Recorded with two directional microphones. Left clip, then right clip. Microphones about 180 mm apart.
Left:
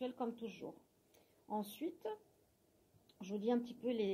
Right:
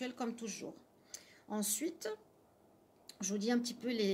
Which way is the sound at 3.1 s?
35° right (ahead or behind).